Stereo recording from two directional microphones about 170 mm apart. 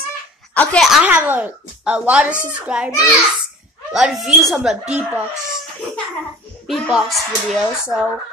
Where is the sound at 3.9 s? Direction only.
Centre (ahead or behind).